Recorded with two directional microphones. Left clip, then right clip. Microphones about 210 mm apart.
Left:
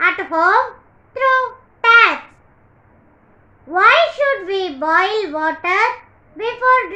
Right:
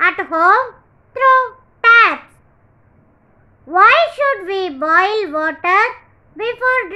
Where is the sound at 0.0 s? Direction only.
10° right (ahead or behind).